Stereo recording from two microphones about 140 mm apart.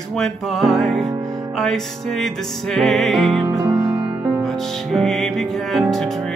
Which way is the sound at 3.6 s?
30° right (ahead or behind).